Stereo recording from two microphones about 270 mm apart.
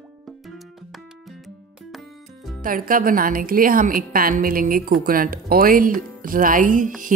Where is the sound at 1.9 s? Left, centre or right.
Centre.